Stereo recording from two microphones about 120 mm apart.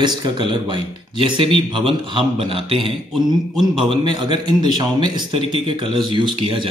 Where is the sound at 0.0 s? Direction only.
40° right (ahead or behind).